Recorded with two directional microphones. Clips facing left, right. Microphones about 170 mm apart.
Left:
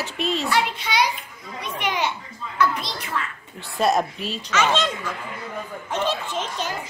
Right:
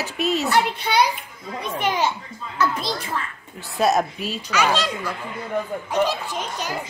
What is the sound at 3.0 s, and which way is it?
Speech, 25° right (ahead or behind).